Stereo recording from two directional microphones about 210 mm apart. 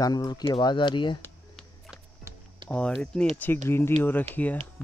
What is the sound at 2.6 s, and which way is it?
Speech, 5° left (ahead or behind).